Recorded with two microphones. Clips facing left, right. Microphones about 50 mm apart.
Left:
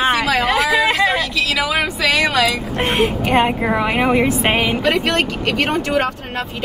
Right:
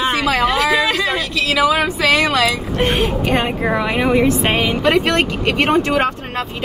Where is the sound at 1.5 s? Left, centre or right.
Right.